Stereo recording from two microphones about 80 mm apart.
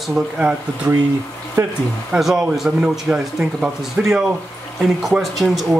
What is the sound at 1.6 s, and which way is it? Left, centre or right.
Speech, right.